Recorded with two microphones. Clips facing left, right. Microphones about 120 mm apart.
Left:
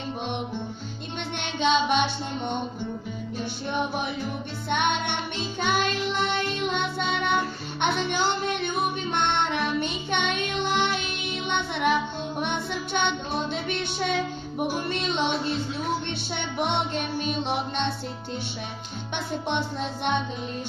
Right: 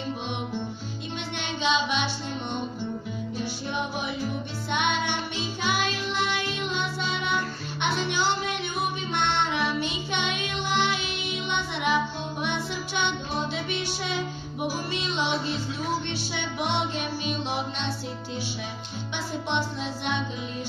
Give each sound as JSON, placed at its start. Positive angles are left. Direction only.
{"t": 1.6, "sound": "music", "side_deg": 50}
{"t": 4.6, "sound": "music", "side_deg": 50}
{"t": 12.4, "sound": "child singing", "side_deg": 50}
{"t": 14.7, "sound": "music", "side_deg": 50}
{"t": 16.5, "sound": "music", "side_deg": 50}
{"t": 19.1, "sound": "music", "side_deg": 50}